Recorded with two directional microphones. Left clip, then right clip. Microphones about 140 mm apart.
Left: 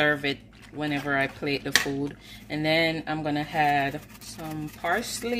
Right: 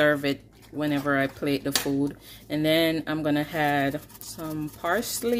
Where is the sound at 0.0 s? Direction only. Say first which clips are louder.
Right 2 dB; 45° right (ahead or behind).